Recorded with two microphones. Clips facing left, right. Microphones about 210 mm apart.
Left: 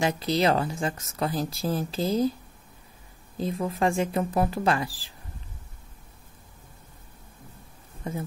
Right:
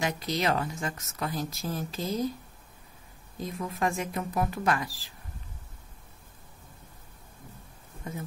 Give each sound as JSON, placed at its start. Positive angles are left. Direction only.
{"t": 0.0, "sound": "speech", "side_deg": 30}
{"t": 3.3, "sound": "speech", "side_deg": 30}